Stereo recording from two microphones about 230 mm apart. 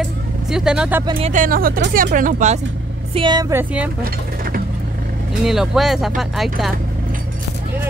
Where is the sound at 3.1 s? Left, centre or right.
Centre.